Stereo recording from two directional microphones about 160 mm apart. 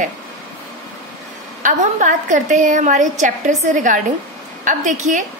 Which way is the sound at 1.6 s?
50° right (ahead or behind).